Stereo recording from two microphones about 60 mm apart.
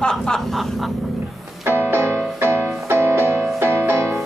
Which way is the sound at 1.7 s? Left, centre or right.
Right.